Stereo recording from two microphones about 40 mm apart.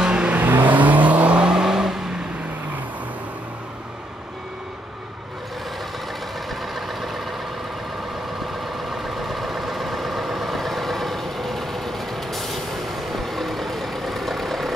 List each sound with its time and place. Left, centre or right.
0.0 s vehicle: right
0.4 s vehicle: right
1.4 s vehicle: centre
6.5 s vehicle: centre